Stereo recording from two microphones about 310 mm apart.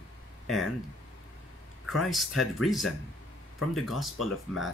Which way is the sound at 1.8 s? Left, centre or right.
Centre.